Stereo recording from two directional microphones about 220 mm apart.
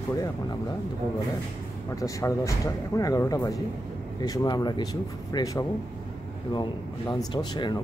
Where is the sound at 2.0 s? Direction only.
15° left (ahead or behind).